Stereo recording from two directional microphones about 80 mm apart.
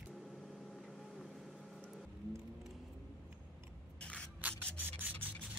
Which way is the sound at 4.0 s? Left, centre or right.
Centre.